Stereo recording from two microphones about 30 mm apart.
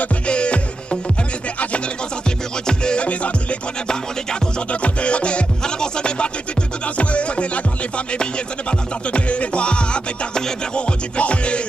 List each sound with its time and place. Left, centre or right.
0.3 s music: left
2.6 s music: left
4.8 s music: left
8.6 s music: left
11.1 s music: left